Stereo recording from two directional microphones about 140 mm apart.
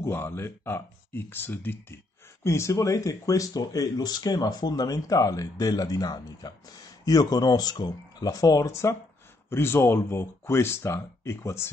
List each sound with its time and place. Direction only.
0.0 s speech: 20° left (ahead or behind)